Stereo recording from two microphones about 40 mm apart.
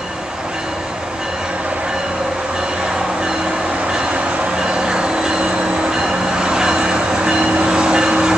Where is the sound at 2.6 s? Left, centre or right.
Centre.